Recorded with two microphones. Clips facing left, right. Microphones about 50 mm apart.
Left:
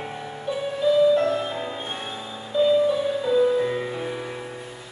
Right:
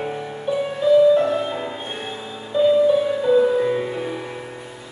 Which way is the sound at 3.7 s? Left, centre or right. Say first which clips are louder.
Right 5 dB; centre.